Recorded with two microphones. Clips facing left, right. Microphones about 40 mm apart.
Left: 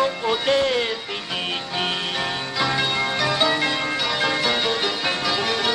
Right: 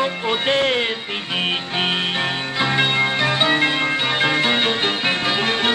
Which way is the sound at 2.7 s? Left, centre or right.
Right.